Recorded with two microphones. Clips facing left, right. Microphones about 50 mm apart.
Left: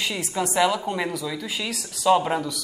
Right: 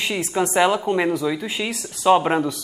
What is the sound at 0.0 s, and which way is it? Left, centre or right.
A man's voice, right.